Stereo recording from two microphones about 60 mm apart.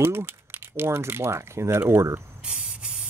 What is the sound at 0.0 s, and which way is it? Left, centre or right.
Speech, right.